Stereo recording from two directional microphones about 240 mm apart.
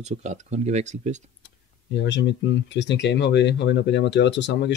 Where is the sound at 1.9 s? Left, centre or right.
Left.